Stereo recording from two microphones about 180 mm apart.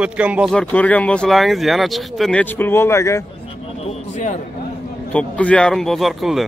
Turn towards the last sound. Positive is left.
turn(degrees=0)  # may be behind; listen again after turning